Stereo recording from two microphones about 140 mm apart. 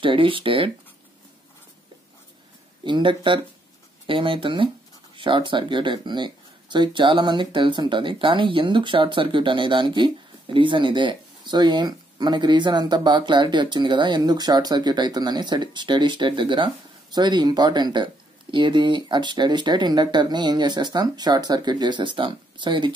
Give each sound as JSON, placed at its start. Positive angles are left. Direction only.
{"t": 0.0, "sound": "speech", "side_deg": -35}
{"t": 2.8, "sound": "speech", "side_deg": -35}